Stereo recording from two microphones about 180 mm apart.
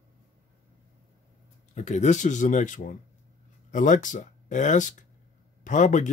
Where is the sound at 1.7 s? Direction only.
40° left (ahead or behind).